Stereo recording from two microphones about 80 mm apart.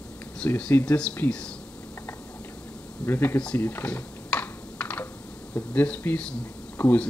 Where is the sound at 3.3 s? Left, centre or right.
Centre.